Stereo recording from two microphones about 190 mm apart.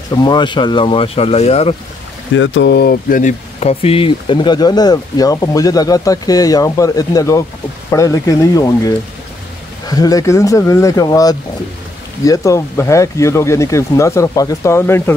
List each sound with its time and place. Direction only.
0.1 s speech: 20° left (ahead or behind)
2.3 s speech: 75° left (ahead or behind); by 15.1 s 10° left (ahead or behind)